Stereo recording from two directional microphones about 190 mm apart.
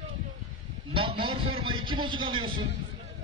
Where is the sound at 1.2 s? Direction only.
25° right (ahead or behind).